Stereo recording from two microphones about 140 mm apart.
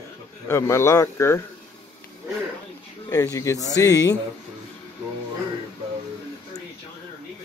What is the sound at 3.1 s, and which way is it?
Speech, 25° left (ahead or behind).